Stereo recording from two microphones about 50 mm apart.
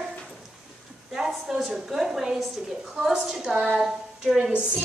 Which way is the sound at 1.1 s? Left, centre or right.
Centre.